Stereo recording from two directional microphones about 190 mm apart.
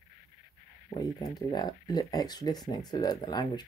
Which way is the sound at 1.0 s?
20° left (ahead or behind).